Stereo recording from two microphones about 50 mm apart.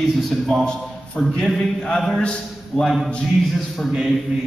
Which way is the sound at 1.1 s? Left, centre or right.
Left.